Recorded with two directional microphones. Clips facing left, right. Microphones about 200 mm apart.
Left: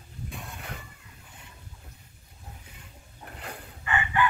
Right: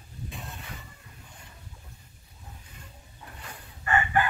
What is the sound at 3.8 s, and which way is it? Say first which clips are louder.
Chicken: right 3 dB; 45° right (ahead or behind).